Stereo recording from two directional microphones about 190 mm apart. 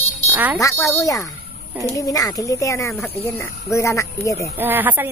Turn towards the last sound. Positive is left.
turn(degrees=-10)  # may be behind; listen again after turning